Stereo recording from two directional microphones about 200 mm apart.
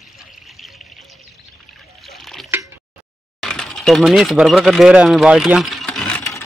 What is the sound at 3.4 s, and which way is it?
Speech, 5° left (ahead or behind).